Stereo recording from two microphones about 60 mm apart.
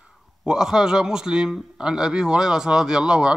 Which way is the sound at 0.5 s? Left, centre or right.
Centre.